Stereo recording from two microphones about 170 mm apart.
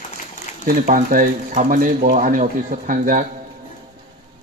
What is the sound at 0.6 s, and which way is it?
Speech, 55° right (ahead or behind).